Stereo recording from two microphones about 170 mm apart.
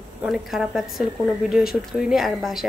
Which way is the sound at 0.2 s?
5° right (ahead or behind).